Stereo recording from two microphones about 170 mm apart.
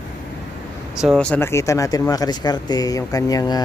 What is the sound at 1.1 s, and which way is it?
Speech, 10° left (ahead or behind).